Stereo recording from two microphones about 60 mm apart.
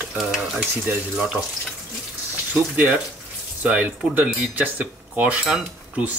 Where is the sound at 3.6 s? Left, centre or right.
Right.